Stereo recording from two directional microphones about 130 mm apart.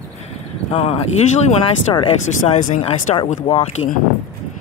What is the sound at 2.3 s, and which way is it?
Speech, 75° left (ahead or behind).